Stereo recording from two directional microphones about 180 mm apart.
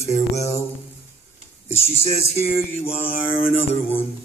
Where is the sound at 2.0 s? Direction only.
35° left (ahead or behind).